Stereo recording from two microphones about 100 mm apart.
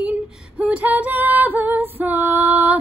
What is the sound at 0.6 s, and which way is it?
Female singing, 15° right (ahead or behind).